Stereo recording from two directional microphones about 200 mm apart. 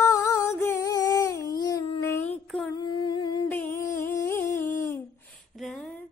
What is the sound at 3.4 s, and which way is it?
Humming, 10° left (ahead or behind).